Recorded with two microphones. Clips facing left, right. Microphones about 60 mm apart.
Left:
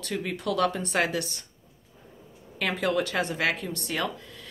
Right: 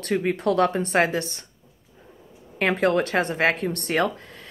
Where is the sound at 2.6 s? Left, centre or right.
Right.